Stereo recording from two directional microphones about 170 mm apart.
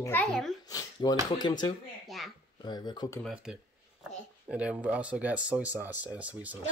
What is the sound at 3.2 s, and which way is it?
Speech, 5° right (ahead or behind).